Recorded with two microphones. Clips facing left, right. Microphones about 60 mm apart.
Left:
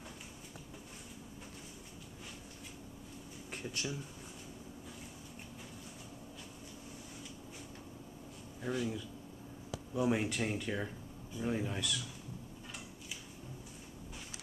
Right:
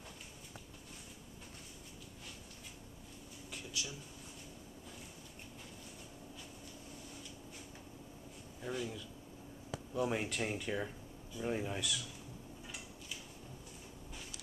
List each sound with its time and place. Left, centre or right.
3.5 s speech: left
8.6 s speech: centre